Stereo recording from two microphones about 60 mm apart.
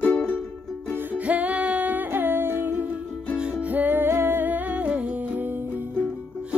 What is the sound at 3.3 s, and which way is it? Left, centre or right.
Music, centre.